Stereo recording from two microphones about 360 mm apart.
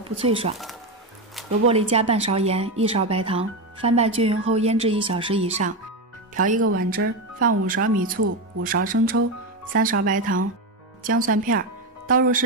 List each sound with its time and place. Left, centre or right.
0.2 s speech: centre
1.7 s speech: centre